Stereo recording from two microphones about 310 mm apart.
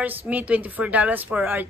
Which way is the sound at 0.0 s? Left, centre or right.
Centre.